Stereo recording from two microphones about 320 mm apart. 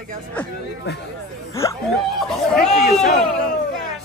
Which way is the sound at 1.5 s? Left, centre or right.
Centre.